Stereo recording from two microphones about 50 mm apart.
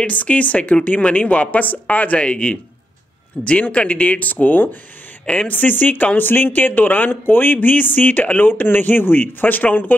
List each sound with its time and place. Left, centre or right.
0.0 s speech: left
3.6 s speech: left
5.2 s speech: left
5.5 s speech: left